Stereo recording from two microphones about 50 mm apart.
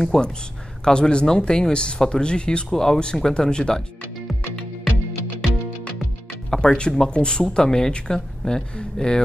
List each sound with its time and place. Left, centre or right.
0.0 s speech: centre
6.5 s speech: centre